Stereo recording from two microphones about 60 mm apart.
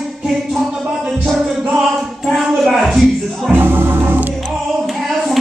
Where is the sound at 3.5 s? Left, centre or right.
Right.